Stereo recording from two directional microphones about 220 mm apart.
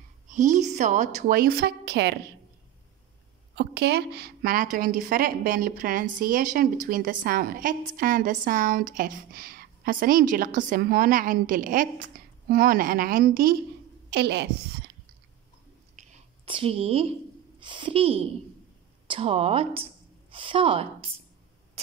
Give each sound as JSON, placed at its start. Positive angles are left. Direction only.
{"t": 0.3, "sound": "a woman's voice", "side_deg": -35}
{"t": 3.5, "sound": "a woman's voice", "side_deg": -50}
{"t": 16.0, "sound": "a sound", "side_deg": -25}
{"t": 17.6, "sound": "a woman's voice", "side_deg": -20}